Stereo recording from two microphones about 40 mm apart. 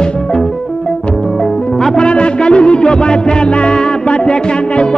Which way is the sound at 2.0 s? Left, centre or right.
Left.